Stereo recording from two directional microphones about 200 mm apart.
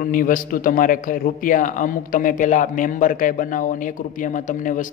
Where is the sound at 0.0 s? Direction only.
45° left (ahead or behind).